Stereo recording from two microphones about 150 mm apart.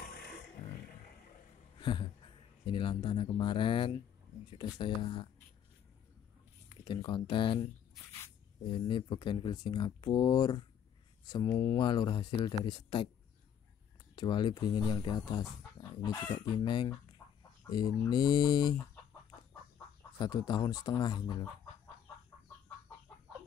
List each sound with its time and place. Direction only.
1.8 s speech: 30° left (ahead or behind)
6.8 s speech: 35° left (ahead or behind)
8.6 s speech: 35° left (ahead or behind)
14.1 s speech: 30° left (ahead or behind)
17.2 s chicken: 20° left (ahead or behind)
17.6 s speech: 30° left (ahead or behind)
20.2 s speech: 30° left (ahead or behind)